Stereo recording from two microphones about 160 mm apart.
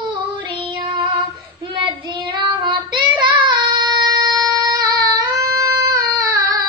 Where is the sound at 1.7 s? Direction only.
30° right (ahead or behind).